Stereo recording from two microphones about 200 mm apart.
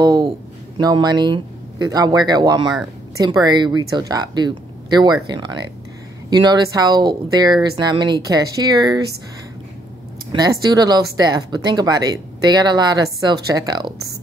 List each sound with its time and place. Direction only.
0.0 s a sound: 20° right (ahead or behind)
0.7 s speech: 20° right (ahead or behind)
10.3 s speech: 20° right (ahead or behind)